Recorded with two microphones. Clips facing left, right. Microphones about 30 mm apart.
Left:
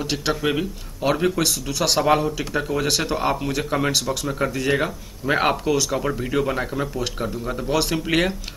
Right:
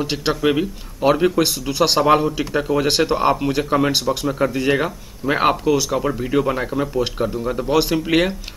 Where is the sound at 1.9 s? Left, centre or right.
Centre.